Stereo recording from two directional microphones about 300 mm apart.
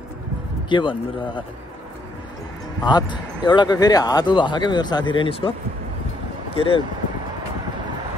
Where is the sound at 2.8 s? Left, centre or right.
Centre.